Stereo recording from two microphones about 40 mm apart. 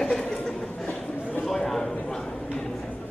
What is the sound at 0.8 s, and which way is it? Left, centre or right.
Chatter, left.